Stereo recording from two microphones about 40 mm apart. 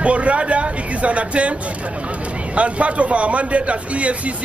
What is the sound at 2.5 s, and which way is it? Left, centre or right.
Speech, right.